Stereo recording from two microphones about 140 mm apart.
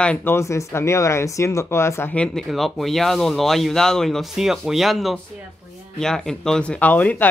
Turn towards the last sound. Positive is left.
turn(degrees=10)  # may be behind; listen again after turning